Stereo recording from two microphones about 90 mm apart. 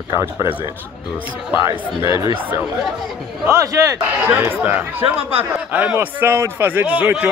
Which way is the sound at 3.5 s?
35° right (ahead or behind).